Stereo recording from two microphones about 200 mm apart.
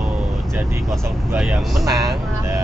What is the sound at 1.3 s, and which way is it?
Speech, 5° right (ahead or behind).